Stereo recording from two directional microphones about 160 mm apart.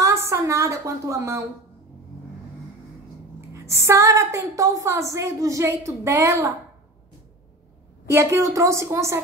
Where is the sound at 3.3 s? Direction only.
15° right (ahead or behind).